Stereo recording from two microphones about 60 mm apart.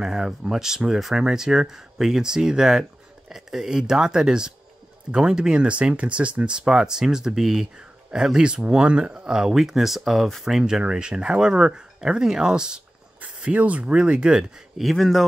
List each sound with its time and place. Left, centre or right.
0.0 s speech: centre
13.2 s speech: right
14.8 s speech: centre